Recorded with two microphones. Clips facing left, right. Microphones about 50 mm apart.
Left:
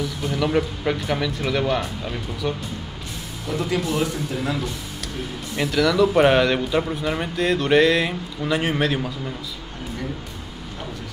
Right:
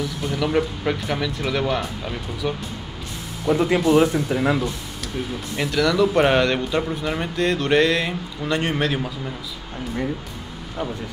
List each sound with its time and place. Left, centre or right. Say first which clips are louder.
0.0 s a man's voice: even; centre
3.4 s speech: right 6 dB; right
5.6 s a man's voice: left 1 dB; centre